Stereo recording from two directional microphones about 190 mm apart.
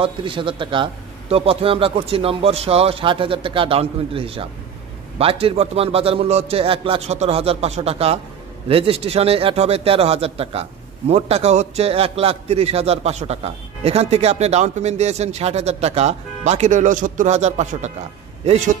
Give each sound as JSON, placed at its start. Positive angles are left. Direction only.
{"t": 0.0, "sound": "a man's voice", "side_deg": -25}